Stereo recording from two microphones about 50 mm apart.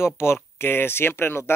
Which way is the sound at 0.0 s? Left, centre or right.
Left.